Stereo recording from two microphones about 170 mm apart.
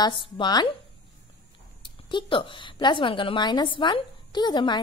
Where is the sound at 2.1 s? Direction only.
30° left (ahead or behind).